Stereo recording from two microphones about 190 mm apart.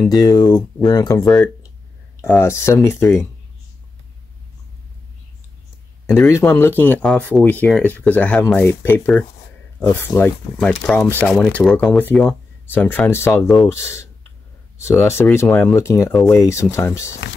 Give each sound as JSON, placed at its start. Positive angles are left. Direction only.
{"t": 0.1, "sound": "speech", "side_deg": 20}
{"t": 1.2, "sound": "speech", "side_deg": 5}
{"t": 6.1, "sound": "speech", "side_deg": 15}
{"t": 16.1, "sound": "speech", "side_deg": 0}
{"t": 16.3, "sound": "speech", "side_deg": 15}